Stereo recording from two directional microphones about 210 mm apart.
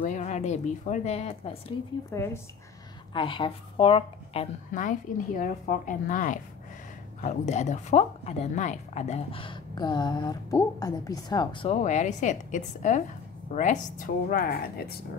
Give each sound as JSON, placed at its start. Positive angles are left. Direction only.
{"t": 0.0, "sound": "a woman's voice", "side_deg": 35}
{"t": 2.0, "sound": "speech", "side_deg": 15}
{"t": 3.1, "sound": "a woman's voice", "side_deg": 25}